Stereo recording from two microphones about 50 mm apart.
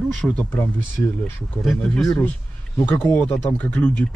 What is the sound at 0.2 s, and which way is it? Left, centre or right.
Speech, centre.